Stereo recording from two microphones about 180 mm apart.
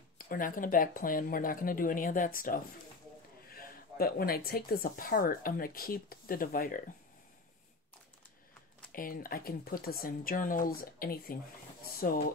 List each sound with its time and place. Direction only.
0.2 s speech: 50° left (ahead or behind)
8.9 s speech: 50° left (ahead or behind)